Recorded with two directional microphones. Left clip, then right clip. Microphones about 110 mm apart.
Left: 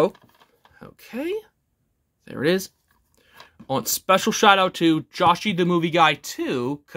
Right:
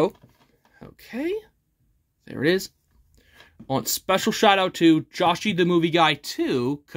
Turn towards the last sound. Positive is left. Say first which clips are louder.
# right 1 dB
turn(degrees=10)  # may be behind; listen again after turning